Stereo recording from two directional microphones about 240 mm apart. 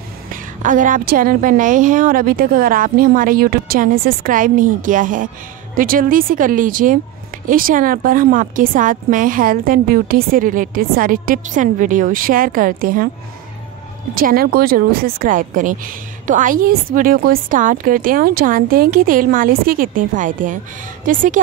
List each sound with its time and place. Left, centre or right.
0.3 s speech: right
14.1 s speech: right